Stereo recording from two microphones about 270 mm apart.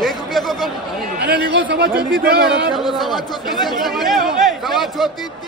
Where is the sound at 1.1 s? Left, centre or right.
Right.